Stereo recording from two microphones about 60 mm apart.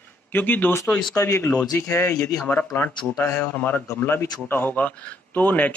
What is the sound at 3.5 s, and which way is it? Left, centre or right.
A man's voice, left.